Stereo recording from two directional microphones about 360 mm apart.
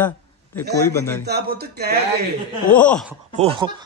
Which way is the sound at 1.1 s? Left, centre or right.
Right.